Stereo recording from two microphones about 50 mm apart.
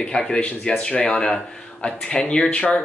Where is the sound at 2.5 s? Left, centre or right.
Left.